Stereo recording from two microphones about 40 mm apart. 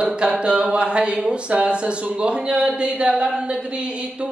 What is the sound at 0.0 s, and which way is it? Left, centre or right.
Speech, right.